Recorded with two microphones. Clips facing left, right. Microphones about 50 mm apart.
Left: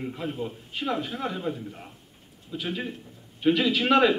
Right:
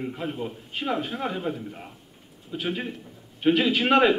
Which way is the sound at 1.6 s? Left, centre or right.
Centre.